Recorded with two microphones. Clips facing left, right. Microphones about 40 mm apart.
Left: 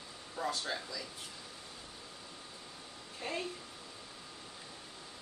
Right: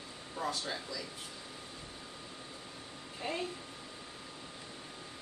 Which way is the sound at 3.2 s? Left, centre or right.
Centre.